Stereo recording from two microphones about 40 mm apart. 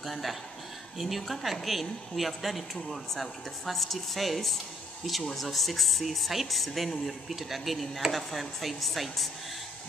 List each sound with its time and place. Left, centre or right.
0.0 s speech: centre